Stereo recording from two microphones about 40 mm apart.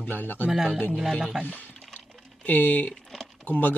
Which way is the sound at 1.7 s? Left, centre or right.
Left.